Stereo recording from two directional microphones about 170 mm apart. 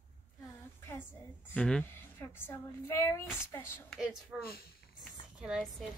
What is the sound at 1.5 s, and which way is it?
A woman's voice, 5° left (ahead or behind).